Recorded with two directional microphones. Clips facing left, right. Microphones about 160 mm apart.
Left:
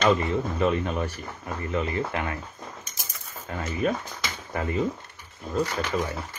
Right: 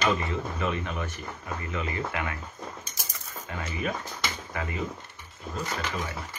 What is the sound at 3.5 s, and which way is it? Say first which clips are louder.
Speech: left 5 dB; 35° left (ahead or behind).